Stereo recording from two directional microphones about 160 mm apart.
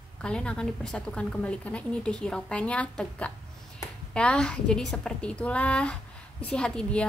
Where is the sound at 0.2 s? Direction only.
5° left (ahead or behind).